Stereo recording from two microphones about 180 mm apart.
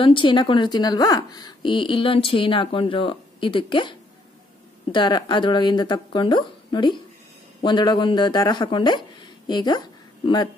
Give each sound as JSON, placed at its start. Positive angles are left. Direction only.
{"t": 0.0, "sound": "a woman's voice", "side_deg": 25}
{"t": 4.9, "sound": "a woman's voice", "side_deg": 25}